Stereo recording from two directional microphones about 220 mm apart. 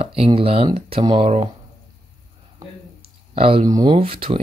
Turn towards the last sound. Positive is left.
turn(degrees=-25)  # may be behind; listen again after turning